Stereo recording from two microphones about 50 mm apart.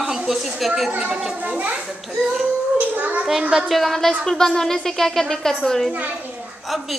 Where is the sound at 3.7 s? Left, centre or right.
Centre.